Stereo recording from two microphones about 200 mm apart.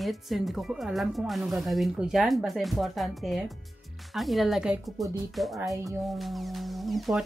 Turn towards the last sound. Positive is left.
turn(degrees=0)  # may be behind; listen again after turning